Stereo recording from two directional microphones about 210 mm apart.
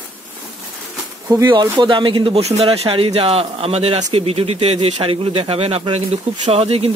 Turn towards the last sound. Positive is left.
turn(degrees=-25)  # may be behind; listen again after turning